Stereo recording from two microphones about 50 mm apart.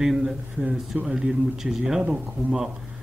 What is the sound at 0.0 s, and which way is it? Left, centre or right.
Speech, centre.